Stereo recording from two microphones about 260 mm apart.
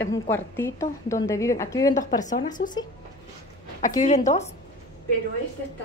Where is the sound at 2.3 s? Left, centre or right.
Left.